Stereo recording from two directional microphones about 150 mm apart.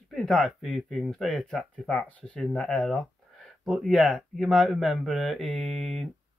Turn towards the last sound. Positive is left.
turn(degrees=0)  # may be behind; listen again after turning